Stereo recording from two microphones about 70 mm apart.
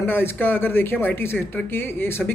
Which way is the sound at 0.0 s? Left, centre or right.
Left.